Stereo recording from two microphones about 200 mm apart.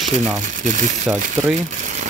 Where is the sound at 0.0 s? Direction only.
35° right (ahead or behind).